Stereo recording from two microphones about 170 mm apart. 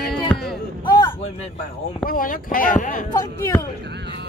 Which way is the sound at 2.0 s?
55° left (ahead or behind).